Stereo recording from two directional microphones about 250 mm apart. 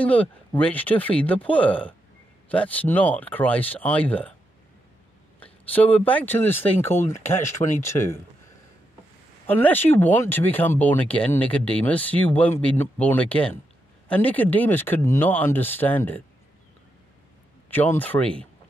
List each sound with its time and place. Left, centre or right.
0.0 s speech: centre
5.4 s speech: centre
7.2 s speech: left
9.5 s speech: centre
17.6 s speech: centre